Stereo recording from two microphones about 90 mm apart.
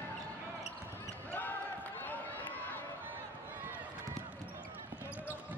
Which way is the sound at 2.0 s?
20° left (ahead or behind).